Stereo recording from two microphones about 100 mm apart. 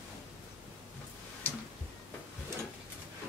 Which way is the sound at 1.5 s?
20° left (ahead or behind).